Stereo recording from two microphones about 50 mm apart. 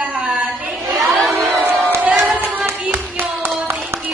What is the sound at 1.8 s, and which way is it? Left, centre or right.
Crowd, right.